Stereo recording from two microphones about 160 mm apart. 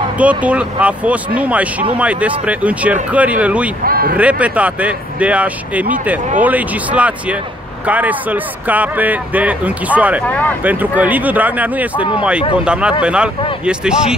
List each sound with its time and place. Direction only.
0.2 s speech: 10° right (ahead or behind)
3.8 s speech: 70° right (ahead or behind)
4.2 s speech: 10° right (ahead or behind)
10.2 s speech: 10° left (ahead or behind)
10.6 s speech: 10° right (ahead or behind)